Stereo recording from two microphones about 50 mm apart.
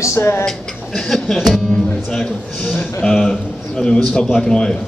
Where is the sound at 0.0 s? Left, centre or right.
Left.